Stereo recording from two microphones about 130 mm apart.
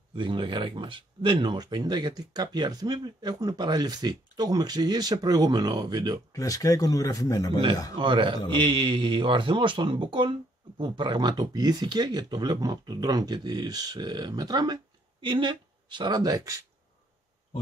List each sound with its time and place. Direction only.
0.1 s speech: 40° right (ahead or behind)
6.3 s speech: 25° left (ahead or behind)
8.0 s speech: 40° right (ahead or behind)